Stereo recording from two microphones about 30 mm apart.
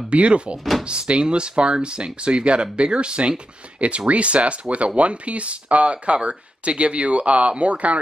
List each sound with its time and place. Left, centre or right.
0.1 s speech: right